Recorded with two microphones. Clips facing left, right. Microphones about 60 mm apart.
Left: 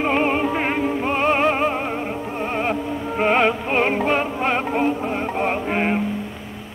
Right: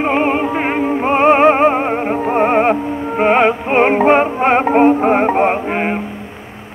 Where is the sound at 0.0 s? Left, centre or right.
Centre; by 2.8 s right.